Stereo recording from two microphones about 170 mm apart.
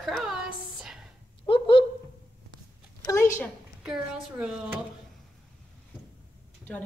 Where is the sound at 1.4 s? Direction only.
30° left (ahead or behind).